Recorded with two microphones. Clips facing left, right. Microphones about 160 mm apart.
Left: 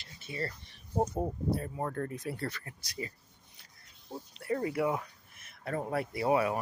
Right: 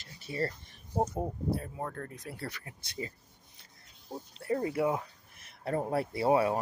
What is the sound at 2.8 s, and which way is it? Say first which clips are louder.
Speech: right 1 dB; 25° right (ahead or behind).